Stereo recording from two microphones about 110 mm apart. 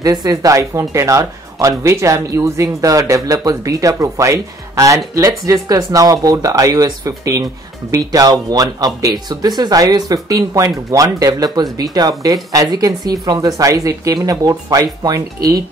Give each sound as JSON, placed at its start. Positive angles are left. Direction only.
{"t": 0.0, "sound": "speech", "side_deg": -35}